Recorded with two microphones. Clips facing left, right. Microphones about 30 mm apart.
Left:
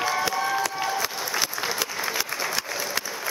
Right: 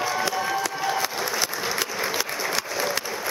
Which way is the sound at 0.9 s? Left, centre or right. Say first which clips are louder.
Right 2 dB; centre.